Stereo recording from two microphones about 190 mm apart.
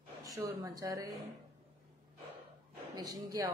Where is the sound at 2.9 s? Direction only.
20° right (ahead or behind).